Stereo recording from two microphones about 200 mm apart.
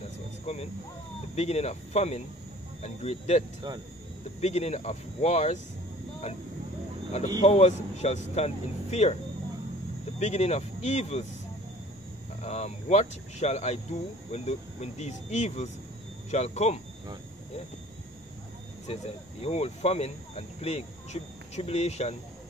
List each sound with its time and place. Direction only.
0.5 s speech: 30° left (ahead or behind)
3.6 s speech: 20° right (ahead or behind)
4.4 s speech: 35° left (ahead or behind)
7.4 s speech: 35° left (ahead or behind)
10.1 s speech: 35° left (ahead or behind)
12.4 s speech: 35° left (ahead or behind)
18.9 s speech: 30° left (ahead or behind)